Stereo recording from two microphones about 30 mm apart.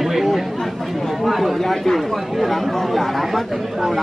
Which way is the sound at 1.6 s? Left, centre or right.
Centre.